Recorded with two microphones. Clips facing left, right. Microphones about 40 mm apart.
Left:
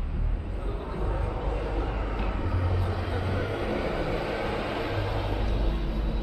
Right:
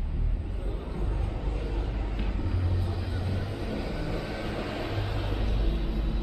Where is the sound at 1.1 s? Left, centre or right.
Left.